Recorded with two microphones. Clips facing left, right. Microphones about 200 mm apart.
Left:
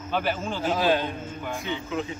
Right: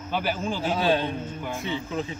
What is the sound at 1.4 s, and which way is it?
Speech, centre (ahead or behind).